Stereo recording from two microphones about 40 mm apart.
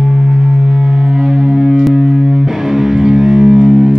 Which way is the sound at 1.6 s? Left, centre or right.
Centre.